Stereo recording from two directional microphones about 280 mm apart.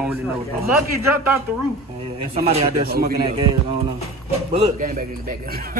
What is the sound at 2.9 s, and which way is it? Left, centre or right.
Speech, right.